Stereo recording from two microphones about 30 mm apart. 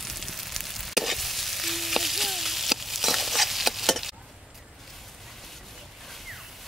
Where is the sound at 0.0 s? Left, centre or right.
Centre.